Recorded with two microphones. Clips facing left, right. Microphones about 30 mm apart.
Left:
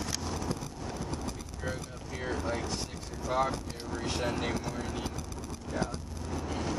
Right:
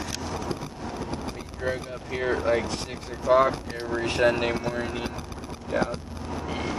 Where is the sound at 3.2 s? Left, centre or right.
Right.